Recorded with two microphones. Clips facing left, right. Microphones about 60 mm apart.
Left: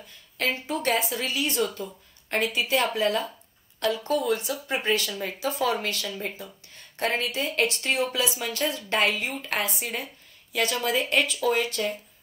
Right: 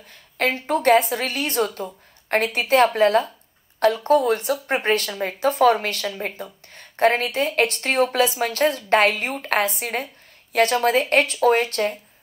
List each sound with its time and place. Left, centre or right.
0.1 s speech: right